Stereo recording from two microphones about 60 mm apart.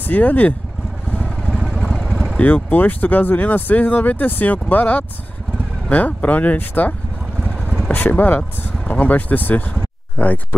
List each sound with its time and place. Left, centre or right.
0.0 s speech: left
1.3 s vehicle: centre
2.4 s speech: left
7.4 s vehicle: right
7.9 s speech: left